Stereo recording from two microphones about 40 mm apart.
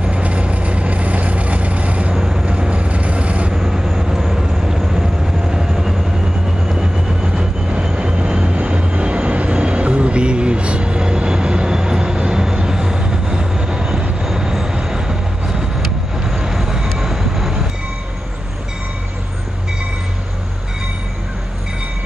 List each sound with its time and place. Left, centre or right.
0.0 s vehicle: right
2.1 s vehicle: centre
2.4 s vehicle: right
3.5 s vehicle: centre
14.2 s vehicle: centre